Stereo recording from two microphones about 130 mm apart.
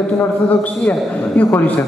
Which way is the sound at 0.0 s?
10° left (ahead or behind).